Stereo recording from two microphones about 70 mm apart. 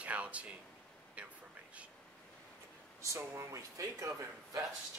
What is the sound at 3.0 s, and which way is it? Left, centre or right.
A man's voice, right.